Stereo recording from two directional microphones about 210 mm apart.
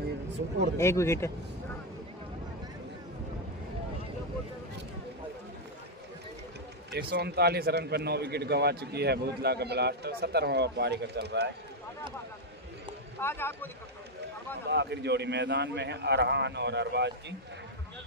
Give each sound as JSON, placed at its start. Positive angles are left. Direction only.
{"t": 0.7, "sound": "speech", "side_deg": 10}
{"t": 6.9, "sound": "a man's voice", "side_deg": -50}
{"t": 13.2, "sound": "speech", "side_deg": 10}
{"t": 14.7, "sound": "a man's voice", "side_deg": -55}